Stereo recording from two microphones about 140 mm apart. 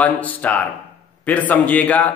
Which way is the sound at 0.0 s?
10° left (ahead or behind).